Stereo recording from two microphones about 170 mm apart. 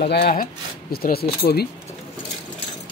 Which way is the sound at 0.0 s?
65° left (ahead or behind).